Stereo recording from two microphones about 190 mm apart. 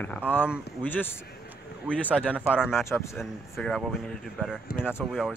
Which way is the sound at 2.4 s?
5° right (ahead or behind).